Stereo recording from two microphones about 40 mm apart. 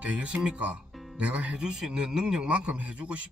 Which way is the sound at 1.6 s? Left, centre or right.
Right.